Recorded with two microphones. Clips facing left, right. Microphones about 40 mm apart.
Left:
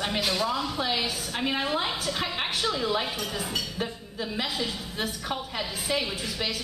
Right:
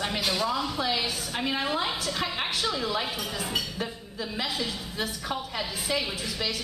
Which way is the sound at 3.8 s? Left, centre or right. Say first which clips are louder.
Left 1 dB; centre.